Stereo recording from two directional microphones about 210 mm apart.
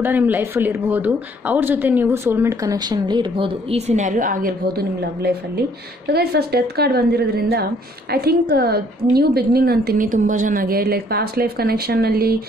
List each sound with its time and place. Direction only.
0.0 s a woman's voice: 10° right (ahead or behind); by 12.4 s 45° right (ahead or behind)